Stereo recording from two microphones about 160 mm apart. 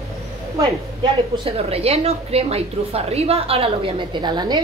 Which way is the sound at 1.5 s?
40° right (ahead or behind).